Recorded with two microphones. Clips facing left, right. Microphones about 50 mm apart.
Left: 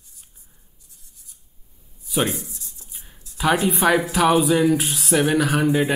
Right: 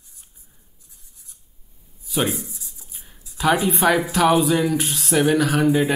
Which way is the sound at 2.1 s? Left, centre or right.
Centre.